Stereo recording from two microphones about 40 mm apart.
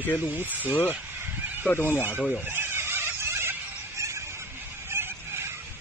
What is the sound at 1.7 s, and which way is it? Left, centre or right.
Speech, left.